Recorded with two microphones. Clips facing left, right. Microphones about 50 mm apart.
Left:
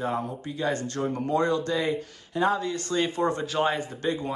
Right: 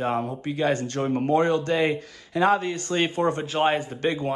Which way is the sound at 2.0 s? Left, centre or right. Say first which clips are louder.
Right 3 dB; right.